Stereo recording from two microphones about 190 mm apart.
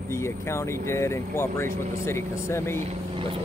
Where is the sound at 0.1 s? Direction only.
15° left (ahead or behind).